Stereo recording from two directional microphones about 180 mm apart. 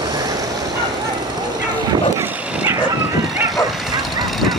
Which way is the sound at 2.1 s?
15° right (ahead or behind).